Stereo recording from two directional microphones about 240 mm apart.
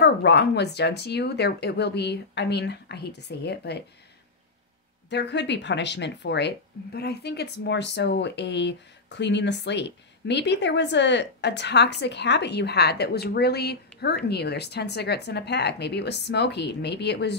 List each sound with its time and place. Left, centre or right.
0.0 s speech: left
5.1 s speech: left